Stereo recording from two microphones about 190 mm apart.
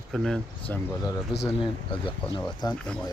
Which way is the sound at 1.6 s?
25° left (ahead or behind).